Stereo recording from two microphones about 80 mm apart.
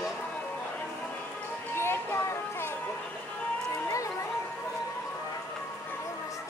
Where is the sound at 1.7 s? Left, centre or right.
Left.